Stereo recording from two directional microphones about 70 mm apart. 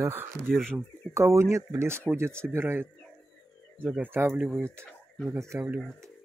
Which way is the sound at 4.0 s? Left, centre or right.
Right.